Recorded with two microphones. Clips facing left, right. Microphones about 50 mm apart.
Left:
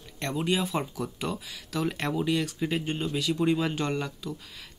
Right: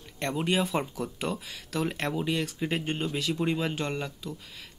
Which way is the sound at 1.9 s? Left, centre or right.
Centre.